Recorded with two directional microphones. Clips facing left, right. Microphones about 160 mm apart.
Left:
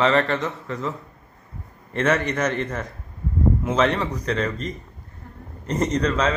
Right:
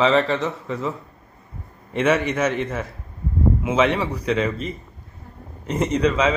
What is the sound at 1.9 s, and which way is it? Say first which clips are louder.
Speech: right 2 dB; 10° right (ahead or behind).